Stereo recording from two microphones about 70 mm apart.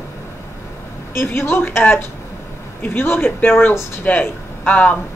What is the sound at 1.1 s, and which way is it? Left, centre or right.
Speech, left.